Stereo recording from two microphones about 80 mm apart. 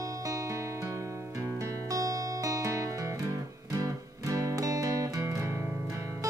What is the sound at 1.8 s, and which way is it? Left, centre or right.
Music, right.